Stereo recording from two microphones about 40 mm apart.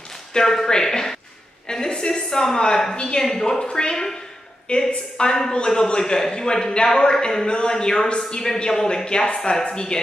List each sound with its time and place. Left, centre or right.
0.3 s a man's voice: centre
4.7 s a man's voice: left
5.1 s a man's voice: centre